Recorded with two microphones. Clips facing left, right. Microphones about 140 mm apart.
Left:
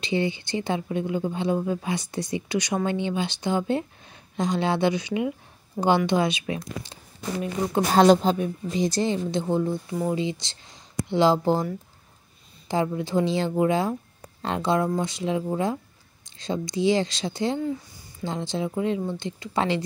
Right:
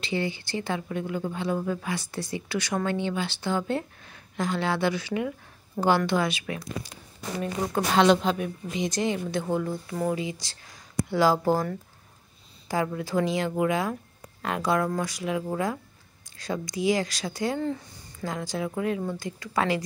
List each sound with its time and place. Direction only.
0.0 s speech: 20° left (ahead or behind)
7.9 s a woman's voice: 40° left (ahead or behind)
12.6 s speech: 25° left (ahead or behind)